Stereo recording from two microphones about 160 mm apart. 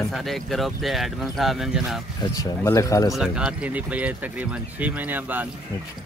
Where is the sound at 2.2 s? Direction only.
20° left (ahead or behind).